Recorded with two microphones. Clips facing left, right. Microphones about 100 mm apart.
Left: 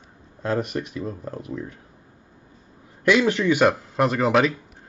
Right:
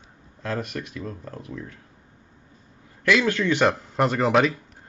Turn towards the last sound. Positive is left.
turn(degrees=0)  # may be behind; listen again after turning